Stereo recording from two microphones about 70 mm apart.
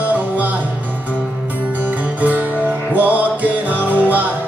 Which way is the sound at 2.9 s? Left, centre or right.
Right.